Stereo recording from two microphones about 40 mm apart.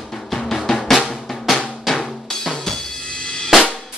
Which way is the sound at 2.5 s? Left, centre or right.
Centre.